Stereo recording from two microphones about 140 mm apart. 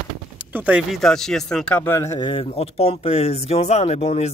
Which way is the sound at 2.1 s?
35° left (ahead or behind).